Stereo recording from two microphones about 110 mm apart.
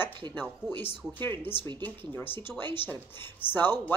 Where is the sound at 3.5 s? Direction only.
15° left (ahead or behind).